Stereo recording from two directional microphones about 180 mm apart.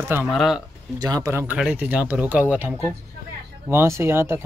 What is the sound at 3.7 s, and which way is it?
Speech, 15° right (ahead or behind).